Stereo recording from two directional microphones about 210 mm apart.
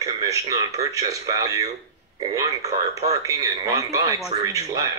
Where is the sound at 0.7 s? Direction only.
15° right (ahead or behind).